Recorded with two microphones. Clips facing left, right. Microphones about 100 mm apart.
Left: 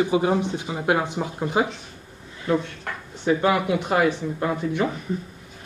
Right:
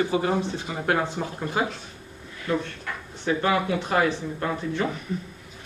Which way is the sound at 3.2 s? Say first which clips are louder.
Left 3 dB; 15° left (ahead or behind).